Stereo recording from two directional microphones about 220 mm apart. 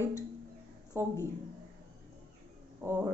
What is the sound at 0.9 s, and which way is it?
Speech, 10° right (ahead or behind).